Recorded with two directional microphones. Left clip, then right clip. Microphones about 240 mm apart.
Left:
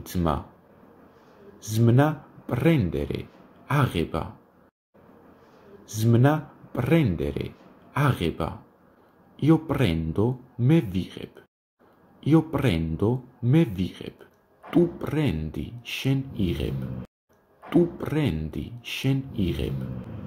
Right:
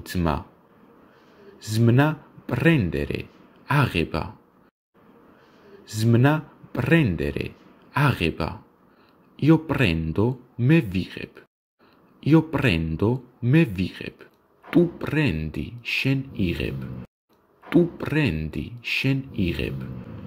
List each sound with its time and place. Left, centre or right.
0.0 s speech: right
1.7 s speech: right
5.9 s speech: right
12.2 s speech: right
18.0 s speech: right